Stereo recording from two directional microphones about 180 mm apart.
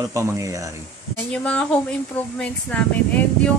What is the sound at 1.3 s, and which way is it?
Speech, 5° left (ahead or behind).